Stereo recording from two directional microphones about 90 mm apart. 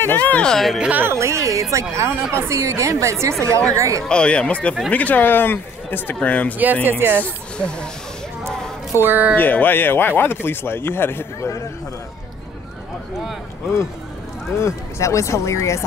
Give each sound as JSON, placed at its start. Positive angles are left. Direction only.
{"t": 0.0, "sound": "speech", "side_deg": 20}
{"t": 0.5, "sound": "speech", "side_deg": 0}
{"t": 0.7, "sound": "speech", "side_deg": -15}
{"t": 1.0, "sound": "speech", "side_deg": -30}
{"t": 4.1, "sound": "speech", "side_deg": 10}
{"t": 6.6, "sound": "speech", "side_deg": -20}
{"t": 7.2, "sound": "speech", "side_deg": 10}
{"t": 8.5, "sound": "music", "side_deg": -25}
{"t": 9.3, "sound": "speech", "side_deg": 20}
{"t": 14.6, "sound": "speech", "side_deg": 35}